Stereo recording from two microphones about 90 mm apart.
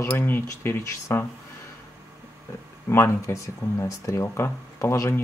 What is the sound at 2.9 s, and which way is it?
Speech, 30° left (ahead or behind).